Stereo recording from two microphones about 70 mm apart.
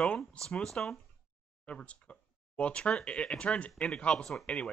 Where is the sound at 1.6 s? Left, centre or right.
Centre.